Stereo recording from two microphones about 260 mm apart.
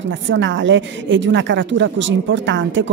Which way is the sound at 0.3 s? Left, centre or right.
Right.